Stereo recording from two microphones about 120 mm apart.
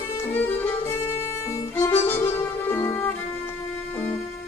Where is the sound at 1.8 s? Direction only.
20° left (ahead or behind).